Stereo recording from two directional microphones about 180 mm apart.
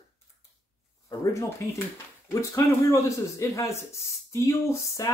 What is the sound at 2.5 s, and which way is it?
Speech, 15° left (ahead or behind).